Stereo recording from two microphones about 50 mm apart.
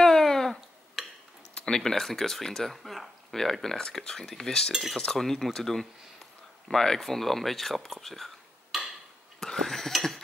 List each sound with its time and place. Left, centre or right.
0.0 s a sound: centre
1.7 s speech: centre
8.7 s tick-tock: centre
9.4 s dishes: centre